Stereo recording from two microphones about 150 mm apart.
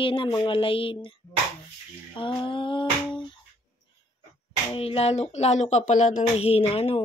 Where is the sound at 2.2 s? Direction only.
35° left (ahead or behind).